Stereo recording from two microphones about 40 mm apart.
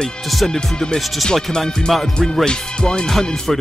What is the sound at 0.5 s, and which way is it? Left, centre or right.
Speech, centre.